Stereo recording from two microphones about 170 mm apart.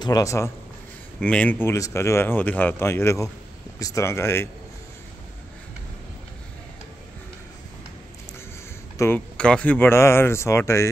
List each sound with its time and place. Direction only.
0.0 s a man's voice: 20° left (ahead or behind)
1.2 s speech: 5° left (ahead or behind)
8.9 s speech: 15° left (ahead or behind)